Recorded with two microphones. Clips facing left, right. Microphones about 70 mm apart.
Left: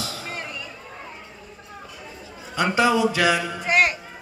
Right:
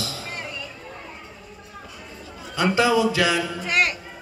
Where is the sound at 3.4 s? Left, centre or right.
Centre.